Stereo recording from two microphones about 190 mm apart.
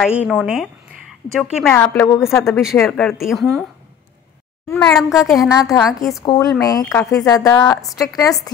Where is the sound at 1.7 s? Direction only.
10° left (ahead or behind).